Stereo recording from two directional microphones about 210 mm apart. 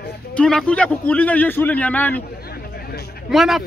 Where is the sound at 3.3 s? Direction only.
Centre (ahead or behind).